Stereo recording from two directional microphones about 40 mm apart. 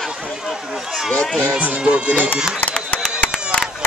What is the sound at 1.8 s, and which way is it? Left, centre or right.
Music, right.